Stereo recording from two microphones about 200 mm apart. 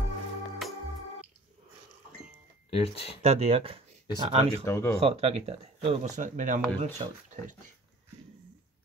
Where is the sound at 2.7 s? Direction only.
30° left (ahead or behind).